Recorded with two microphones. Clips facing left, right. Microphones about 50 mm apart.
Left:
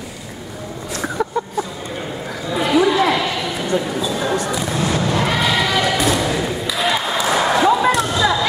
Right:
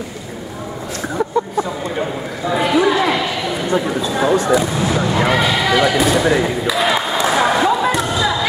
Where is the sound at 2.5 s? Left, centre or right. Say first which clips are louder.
Even; centre.